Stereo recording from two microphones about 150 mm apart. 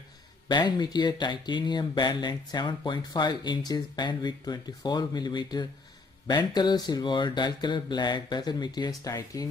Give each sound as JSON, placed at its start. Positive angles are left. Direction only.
{"t": 0.5, "sound": "speech", "side_deg": 30}